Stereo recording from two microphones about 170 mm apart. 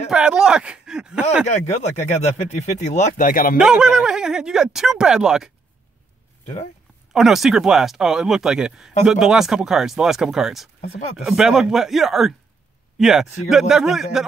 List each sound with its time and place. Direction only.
0.1 s speech: 5° right (ahead or behind)
1.5 s speech: 40° left (ahead or behind)
3.5 s speech: 5° right (ahead or behind)
7.1 s speech: centre (ahead or behind)